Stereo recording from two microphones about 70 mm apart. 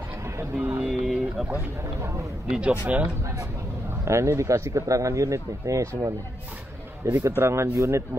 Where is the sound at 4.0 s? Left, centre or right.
Right.